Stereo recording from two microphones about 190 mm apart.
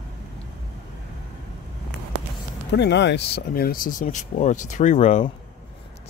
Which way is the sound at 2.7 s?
65° left (ahead or behind).